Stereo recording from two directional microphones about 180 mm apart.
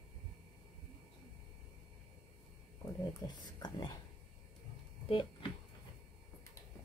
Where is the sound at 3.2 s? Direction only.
20° left (ahead or behind).